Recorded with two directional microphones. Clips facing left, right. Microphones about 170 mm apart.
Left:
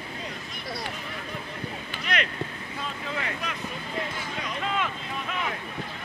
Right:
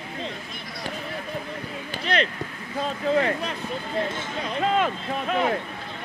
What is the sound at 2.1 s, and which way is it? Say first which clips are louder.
Speech: right 4 dB; 30° right (ahead or behind).